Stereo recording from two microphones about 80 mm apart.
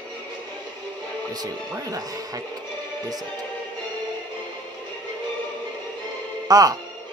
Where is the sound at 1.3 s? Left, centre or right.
Right.